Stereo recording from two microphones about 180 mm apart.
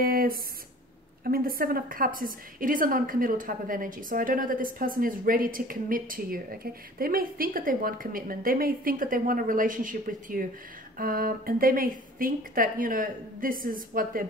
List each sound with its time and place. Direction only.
0.0 s a woman's voice: 55° right (ahead or behind)